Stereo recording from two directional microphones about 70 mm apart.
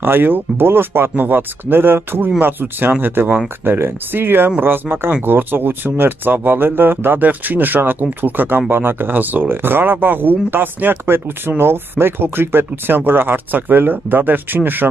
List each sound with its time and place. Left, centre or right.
0.0 s speech: right